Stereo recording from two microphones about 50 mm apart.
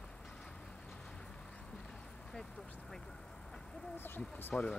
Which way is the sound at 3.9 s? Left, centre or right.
Left.